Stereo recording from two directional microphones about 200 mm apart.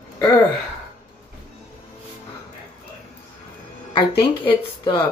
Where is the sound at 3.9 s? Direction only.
25° left (ahead or behind).